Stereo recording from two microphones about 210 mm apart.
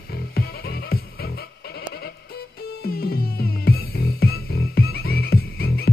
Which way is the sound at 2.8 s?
45° left (ahead or behind).